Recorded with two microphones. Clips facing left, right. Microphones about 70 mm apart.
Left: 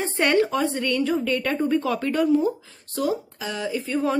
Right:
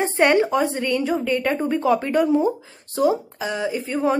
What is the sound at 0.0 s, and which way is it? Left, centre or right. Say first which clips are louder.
A woman's voice: right 3 dB; centre.